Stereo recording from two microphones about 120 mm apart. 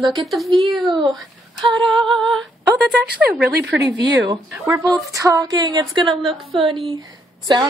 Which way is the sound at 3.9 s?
35° right (ahead or behind).